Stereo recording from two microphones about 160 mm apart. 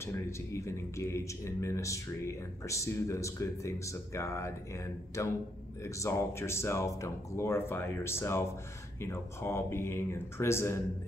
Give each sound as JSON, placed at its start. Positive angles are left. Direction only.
{"t": 0.0, "sound": "speech", "side_deg": 15}